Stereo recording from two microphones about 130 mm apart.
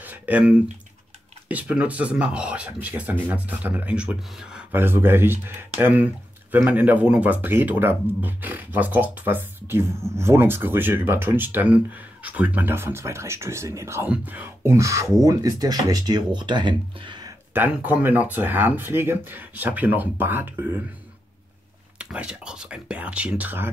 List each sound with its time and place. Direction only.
0.0 s a sound: 10° right (ahead or behind)
1.5 s speech: 10° right (ahead or behind)
4.7 s speech: 15° right (ahead or behind); by 17.3 s 35° right (ahead or behind)
17.6 s speech: 15° right (ahead or behind)
21.9 s speech: 10° right (ahead or behind)